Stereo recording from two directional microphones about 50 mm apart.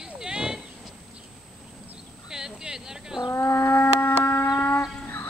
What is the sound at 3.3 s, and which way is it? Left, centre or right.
Livestock, left.